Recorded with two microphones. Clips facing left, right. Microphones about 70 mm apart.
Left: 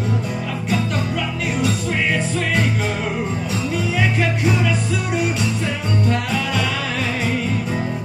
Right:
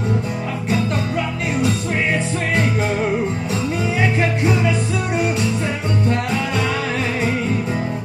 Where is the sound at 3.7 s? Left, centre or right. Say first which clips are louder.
Even; right.